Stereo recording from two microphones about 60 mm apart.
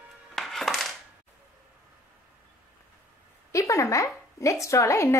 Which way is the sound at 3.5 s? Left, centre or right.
Left.